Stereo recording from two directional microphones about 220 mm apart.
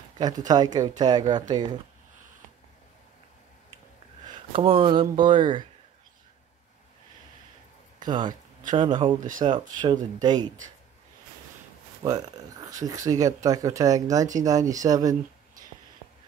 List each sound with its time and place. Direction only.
0.5 s speech: 20° right (ahead or behind)
4.5 s speech: 25° right (ahead or behind)
8.0 s speech: 20° right (ahead or behind)
12.0 s speech: 15° right (ahead or behind)